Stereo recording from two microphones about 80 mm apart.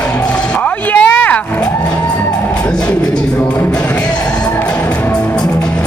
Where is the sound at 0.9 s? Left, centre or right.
Centre.